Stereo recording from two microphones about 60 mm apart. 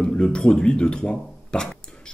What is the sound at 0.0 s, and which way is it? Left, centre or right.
Speech, centre.